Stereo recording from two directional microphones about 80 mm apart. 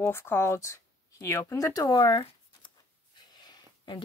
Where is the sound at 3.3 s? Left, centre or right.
Left.